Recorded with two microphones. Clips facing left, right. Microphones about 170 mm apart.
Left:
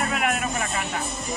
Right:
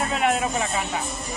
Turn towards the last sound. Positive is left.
turn(degrees=-25)  # may be behind; listen again after turning